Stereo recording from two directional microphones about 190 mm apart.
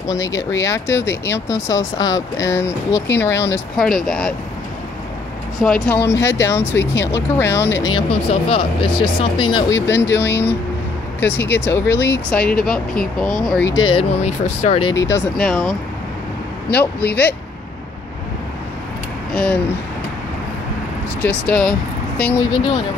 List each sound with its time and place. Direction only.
0.0 s speech: 15° left (ahead or behind)
3.7 s speech: centre (ahead or behind)
5.6 s speech: centre (ahead or behind)
8.1 s speech: 30° left (ahead or behind); by 13.7 s 10° left (ahead or behind)
13.7 s speech: 25° left (ahead or behind)
14.9 s speech: 15° left (ahead or behind)
15.3 s speech: 5° left (ahead or behind)
16.7 s speech: 10° left (ahead or behind)
19.3 s speech: 5° left (ahead or behind)
21.2 s speech: 5° left (ahead or behind)